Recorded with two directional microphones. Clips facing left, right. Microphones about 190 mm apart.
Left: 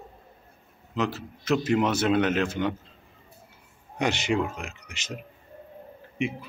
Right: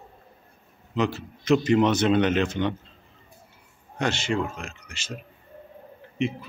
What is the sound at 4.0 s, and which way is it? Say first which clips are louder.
A man's voice: left 1 dB; 15° left (ahead or behind).